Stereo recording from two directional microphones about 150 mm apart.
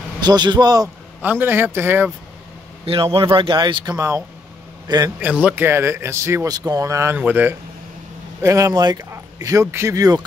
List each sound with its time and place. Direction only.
0.2 s speech: 30° right (ahead or behind)
1.2 s speech: 15° right (ahead or behind)
2.8 s a man's voice: 35° right (ahead or behind)
5.2 s speech: 10° right (ahead or behind)